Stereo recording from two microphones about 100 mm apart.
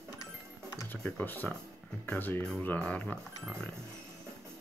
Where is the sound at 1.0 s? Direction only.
20° left (ahead or behind).